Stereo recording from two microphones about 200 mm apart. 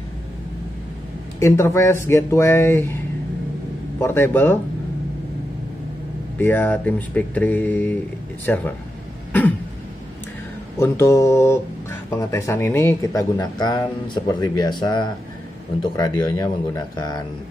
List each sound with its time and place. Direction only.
1.4 s speech: 15° left (ahead or behind)
4.0 s speech: 10° left (ahead or behind)
6.3 s speech: 10° left (ahead or behind)
10.8 s speech: 15° left (ahead or behind)